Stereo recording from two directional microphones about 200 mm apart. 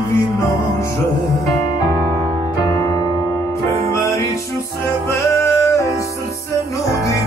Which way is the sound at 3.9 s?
15° left (ahead or behind).